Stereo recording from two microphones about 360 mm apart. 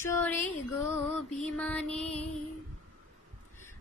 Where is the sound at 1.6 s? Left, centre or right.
Centre.